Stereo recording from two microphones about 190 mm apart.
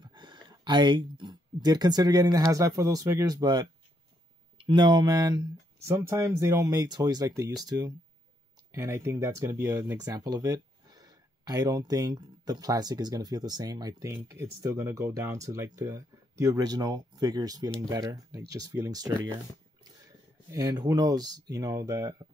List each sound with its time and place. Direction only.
0.0 s speech: 25° right (ahead or behind)
20.5 s speech: 20° right (ahead or behind)